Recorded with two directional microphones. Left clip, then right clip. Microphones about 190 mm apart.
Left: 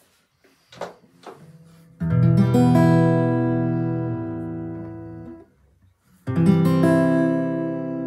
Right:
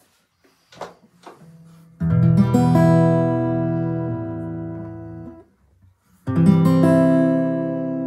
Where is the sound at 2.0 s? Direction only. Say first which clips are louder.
Right 1 dB; 25° right (ahead or behind).